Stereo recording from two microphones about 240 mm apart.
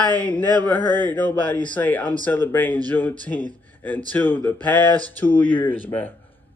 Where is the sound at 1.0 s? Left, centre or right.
Centre.